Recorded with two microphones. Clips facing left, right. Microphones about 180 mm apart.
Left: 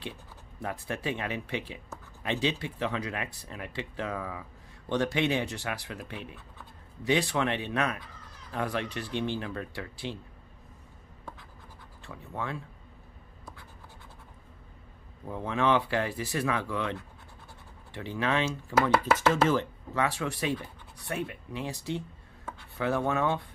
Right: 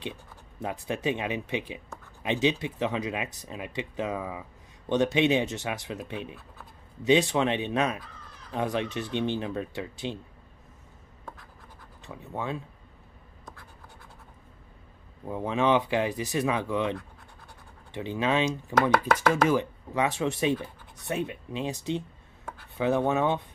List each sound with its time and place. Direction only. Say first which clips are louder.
0.6 s speech: right 3 dB; 20° right (ahead or behind)
12.0 s speech: right 2 dB; 20° right (ahead or behind)
15.2 s speech: right 2 dB; 20° right (ahead or behind)
17.9 s speech: right 3 dB; 20° right (ahead or behind)
18.8 s speech: right 1 dB; 5° left (ahead or behind)
19.1 s speech: right 1 dB; 10° right (ahead or behind)